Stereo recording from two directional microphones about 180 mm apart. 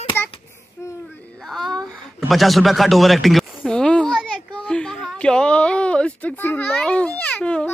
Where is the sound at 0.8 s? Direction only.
10° left (ahead or behind).